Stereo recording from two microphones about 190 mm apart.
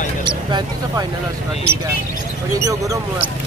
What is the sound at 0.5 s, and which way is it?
Speech, 20° right (ahead or behind).